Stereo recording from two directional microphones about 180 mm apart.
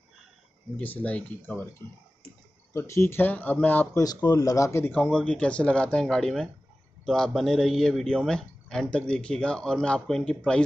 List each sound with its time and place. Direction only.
0.7 s speech: 10° left (ahead or behind)
4.0 s a man's voice: 20° left (ahead or behind); by 10.6 s 5° left (ahead or behind)